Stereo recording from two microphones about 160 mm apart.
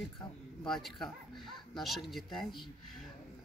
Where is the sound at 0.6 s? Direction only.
Centre (ahead or behind).